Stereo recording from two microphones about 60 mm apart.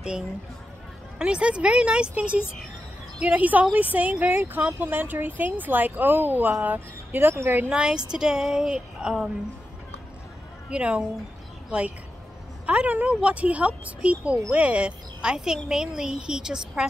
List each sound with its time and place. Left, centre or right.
1.1 s speech: centre
7.2 s speech: right
7.7 s speech: centre
10.7 s speech: centre
12.6 s speech: right